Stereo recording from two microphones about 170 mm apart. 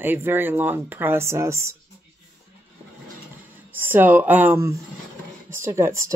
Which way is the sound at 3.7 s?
10° right (ahead or behind).